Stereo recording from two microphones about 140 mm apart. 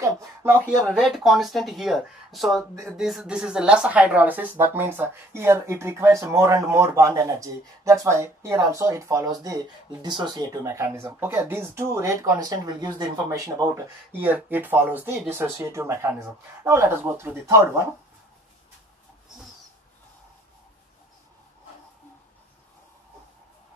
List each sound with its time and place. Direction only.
0.0 s speech: 20° right (ahead or behind)
0.8 s speech: centre (ahead or behind)
2.7 s speech: 20° right (ahead or behind)
3.0 s speech: centre (ahead or behind); by 17.8 s 20° right (ahead or behind)